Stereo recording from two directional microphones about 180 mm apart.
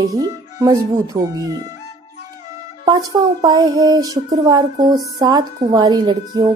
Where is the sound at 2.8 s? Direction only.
20° right (ahead or behind).